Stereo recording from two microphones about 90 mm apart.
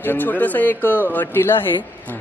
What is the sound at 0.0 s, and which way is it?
Speech, 20° left (ahead or behind).